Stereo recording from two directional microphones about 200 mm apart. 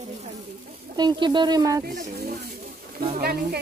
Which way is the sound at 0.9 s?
20° right (ahead or behind).